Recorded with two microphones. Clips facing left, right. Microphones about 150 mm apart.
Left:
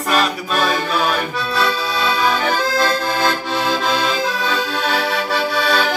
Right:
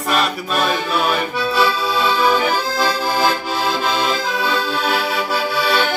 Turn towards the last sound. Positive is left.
turn(degrees=-5)  # may be behind; listen again after turning